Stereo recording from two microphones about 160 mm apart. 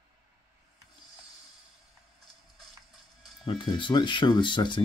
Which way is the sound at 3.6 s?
30° left (ahead or behind).